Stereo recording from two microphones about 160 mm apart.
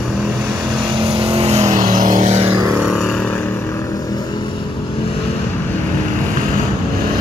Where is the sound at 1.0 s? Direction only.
35° right (ahead or behind).